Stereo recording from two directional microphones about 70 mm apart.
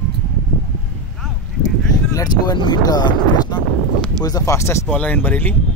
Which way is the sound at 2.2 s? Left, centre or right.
Left.